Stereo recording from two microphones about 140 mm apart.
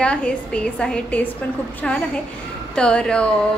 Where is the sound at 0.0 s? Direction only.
5° left (ahead or behind).